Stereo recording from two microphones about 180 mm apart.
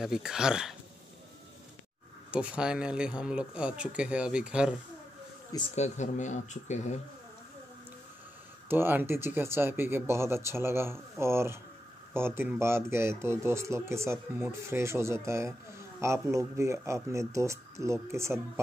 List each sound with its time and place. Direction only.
0.0 s speech: 5° right (ahead or behind)
2.3 s speech: 5° right (ahead or behind)
5.8 s speech: 40° left (ahead or behind)
8.6 s speech: 10° right (ahead or behind)